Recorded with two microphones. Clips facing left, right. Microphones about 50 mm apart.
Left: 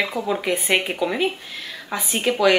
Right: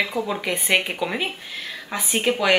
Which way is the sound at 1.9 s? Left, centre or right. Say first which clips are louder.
Even; centre.